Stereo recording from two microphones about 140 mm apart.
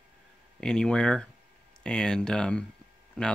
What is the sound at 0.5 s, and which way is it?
Speech, 5° left (ahead or behind).